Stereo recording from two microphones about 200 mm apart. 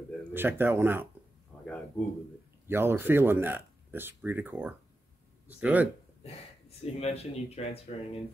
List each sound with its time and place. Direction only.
0.3 s speech: 10° right (ahead or behind)
1.5 s a sound: 5° left (ahead or behind)
2.6 s speech: 10° right (ahead or behind)
6.8 s speech: 30° left (ahead or behind)